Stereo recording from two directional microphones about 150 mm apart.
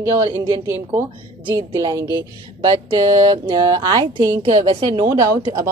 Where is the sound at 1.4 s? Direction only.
30° right (ahead or behind).